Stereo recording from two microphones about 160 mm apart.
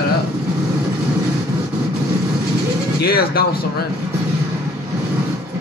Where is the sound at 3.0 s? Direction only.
70° left (ahead or behind).